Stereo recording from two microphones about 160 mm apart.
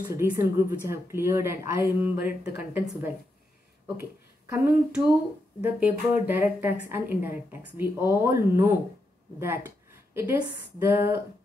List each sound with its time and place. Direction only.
0.1 s a woman's voice: 15° right (ahead or behind)
4.5 s a woman's voice: 10° right (ahead or behind)